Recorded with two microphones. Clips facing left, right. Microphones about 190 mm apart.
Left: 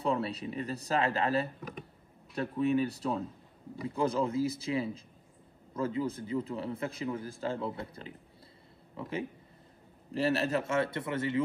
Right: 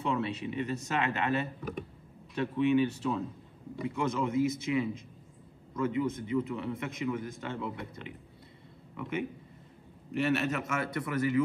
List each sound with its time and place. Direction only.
0.0 s a man's voice: 35° left (ahead or behind)